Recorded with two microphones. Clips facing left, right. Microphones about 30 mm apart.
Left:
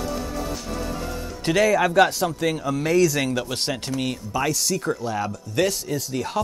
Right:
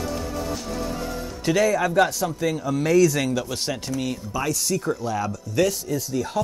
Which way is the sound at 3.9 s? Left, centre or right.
Left.